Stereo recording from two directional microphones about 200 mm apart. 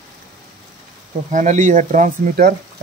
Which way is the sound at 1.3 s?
40° right (ahead or behind).